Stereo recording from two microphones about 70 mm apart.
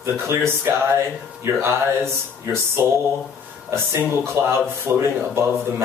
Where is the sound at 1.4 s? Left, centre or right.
Right.